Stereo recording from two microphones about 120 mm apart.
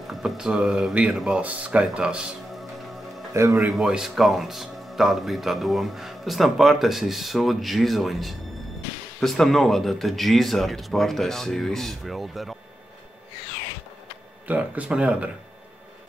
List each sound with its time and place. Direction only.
0.0 s speech: centre (ahead or behind)
14.5 s speech: 10° right (ahead or behind)